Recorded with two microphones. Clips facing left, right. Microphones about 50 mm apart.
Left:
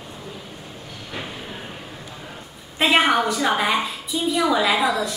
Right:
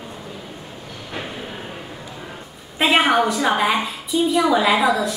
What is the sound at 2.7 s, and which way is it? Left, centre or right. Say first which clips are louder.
A woman's voice: right 1 dB; centre.